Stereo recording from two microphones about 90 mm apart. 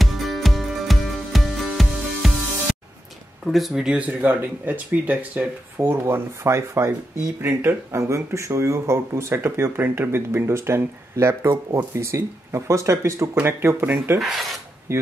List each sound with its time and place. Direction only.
0.0 s music: centre (ahead or behind)
3.4 s speech: centre (ahead or behind); by 5.5 s 15° right (ahead or behind)
5.8 s speech: 30° right (ahead or behind)
14.2 s filing: centre (ahead or behind)
14.9 s speech: 30° right (ahead or behind)